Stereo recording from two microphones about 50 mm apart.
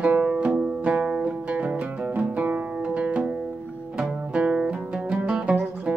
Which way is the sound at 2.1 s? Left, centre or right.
Right.